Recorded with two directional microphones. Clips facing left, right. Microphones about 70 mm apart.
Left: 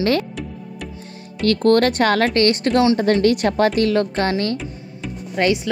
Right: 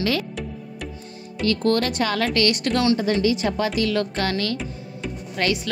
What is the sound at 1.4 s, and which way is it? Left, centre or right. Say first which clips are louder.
Speech: left 6 dB; left.